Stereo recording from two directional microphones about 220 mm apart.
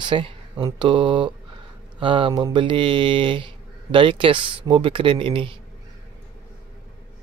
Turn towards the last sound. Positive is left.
turn(degrees=-25)  # may be behind; listen again after turning